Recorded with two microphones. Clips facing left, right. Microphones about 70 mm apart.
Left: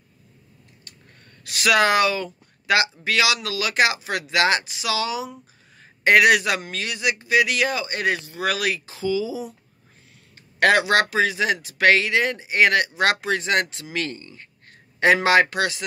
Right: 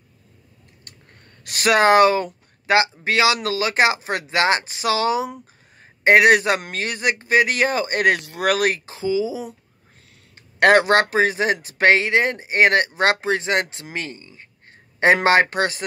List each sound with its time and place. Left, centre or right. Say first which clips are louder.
1.4 s speech: right 2 dB; right
8.9 s speech: right 2 dB; right
10.6 s speech: right 3 dB; right
15.2 s speech: right 1 dB; right